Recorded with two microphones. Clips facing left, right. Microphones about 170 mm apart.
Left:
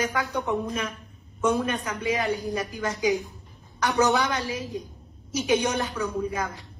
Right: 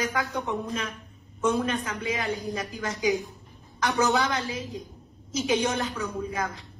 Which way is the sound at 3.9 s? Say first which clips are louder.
Left 2 dB; 20° left (ahead or behind).